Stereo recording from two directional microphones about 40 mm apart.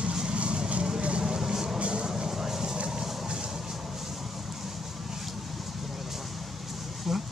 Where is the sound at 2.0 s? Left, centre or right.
Centre.